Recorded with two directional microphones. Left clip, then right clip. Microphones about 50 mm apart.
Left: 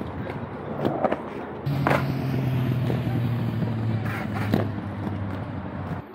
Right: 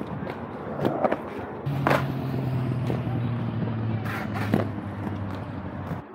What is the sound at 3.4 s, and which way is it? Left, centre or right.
Music, left.